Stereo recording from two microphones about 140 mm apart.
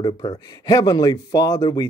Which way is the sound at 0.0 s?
30° left (ahead or behind).